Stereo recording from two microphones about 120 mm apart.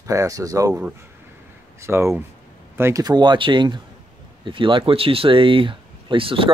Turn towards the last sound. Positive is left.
turn(degrees=-50)  # may be behind; listen again after turning